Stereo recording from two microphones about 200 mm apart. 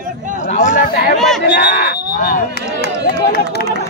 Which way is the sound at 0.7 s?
50° left (ahead or behind).